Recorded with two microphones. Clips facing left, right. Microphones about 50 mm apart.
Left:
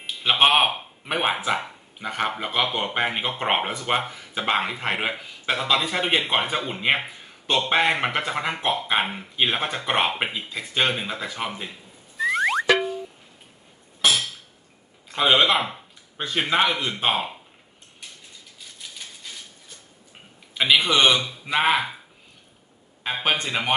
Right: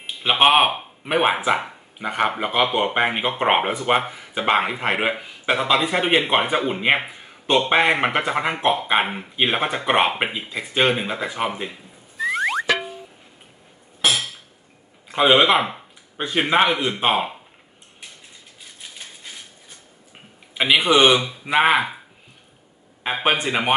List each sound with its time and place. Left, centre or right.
0.0 s speech: centre
12.2 s music: centre
15.0 s speech: centre
18.6 s typewriter: right
20.5 s speech: centre
23.0 s speech: right